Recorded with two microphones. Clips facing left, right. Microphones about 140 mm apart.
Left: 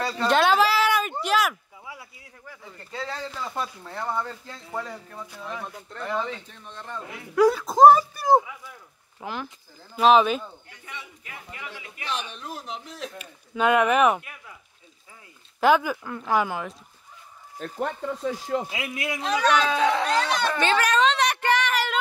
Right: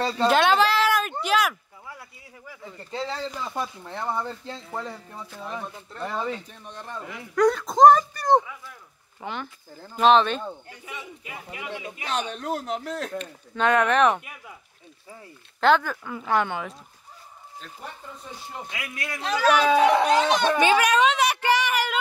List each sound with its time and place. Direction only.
0.3 s a sound: centre (ahead or behind)
2.9 s speech: 25° right (ahead or behind)
7.3 s speech: 5° left (ahead or behind)
10.9 s speech: 15° right (ahead or behind)
12.3 s speech: 70° right (ahead or behind)
13.2 s speech: 5° left (ahead or behind)
15.6 s speech: 10° left (ahead or behind)
17.7 s speech: 75° left (ahead or behind)
18.7 s speech: 25° left (ahead or behind)
19.2 s speech: 5° right (ahead or behind)